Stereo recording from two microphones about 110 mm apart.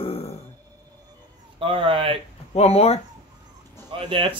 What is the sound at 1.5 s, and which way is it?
Speech, 55° right (ahead or behind).